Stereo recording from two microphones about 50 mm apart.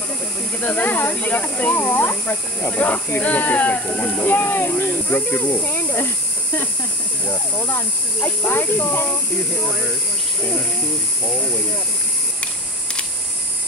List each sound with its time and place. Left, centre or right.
0.6 s speech: left
4.2 s speech: left
5.0 s speech: left
5.7 s snake: left
7.2 s speech: left